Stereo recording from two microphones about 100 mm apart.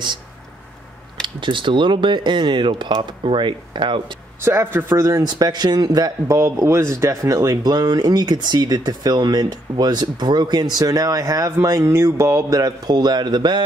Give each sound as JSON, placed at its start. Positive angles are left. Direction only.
{"t": 1.2, "sound": "speech", "side_deg": -55}
{"t": 4.4, "sound": "a man's voice", "side_deg": -25}